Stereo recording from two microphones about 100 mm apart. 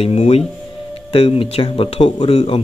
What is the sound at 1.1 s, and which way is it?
Speech, 75° left (ahead or behind).